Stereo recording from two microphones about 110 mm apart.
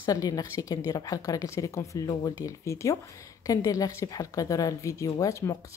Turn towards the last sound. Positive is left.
turn(degrees=30)  # may be behind; listen again after turning